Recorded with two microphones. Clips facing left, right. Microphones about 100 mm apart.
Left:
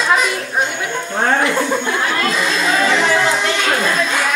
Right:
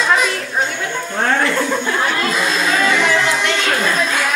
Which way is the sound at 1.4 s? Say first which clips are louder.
Left 1 dB; 10° left (ahead or behind).